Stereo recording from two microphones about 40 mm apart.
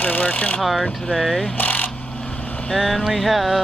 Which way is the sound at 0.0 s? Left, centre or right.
Left.